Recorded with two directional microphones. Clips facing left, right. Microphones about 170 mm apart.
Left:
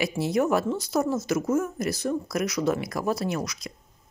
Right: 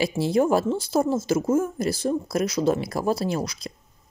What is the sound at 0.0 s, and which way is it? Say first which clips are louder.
Speech: right 3 dB; 30° right (ahead or behind).